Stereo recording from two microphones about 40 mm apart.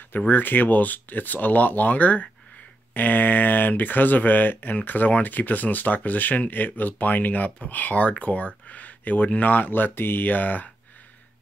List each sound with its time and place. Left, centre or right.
0.3 s speech: left